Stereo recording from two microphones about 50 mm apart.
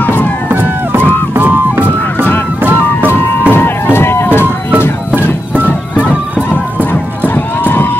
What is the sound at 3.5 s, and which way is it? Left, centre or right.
Music, left.